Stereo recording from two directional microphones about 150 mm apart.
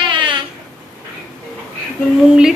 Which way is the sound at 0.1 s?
35° right (ahead or behind).